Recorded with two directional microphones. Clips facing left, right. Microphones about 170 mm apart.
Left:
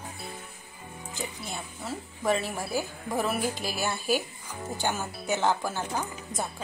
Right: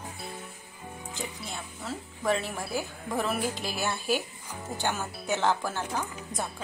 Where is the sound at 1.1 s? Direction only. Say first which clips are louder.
Left 2 dB; 5° left (ahead or behind).